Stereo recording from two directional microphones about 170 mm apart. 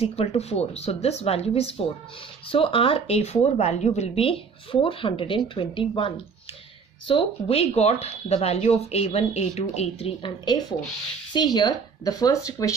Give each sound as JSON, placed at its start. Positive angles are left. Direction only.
{"t": 0.0, "sound": "speech", "side_deg": 35}